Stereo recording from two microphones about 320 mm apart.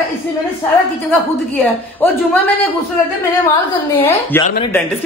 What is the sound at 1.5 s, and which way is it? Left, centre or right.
Speech, centre.